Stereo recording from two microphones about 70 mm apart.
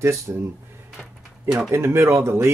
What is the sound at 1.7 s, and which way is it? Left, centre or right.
Speech, right.